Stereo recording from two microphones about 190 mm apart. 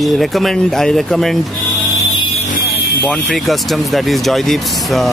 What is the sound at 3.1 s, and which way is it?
Speech, centre (ahead or behind).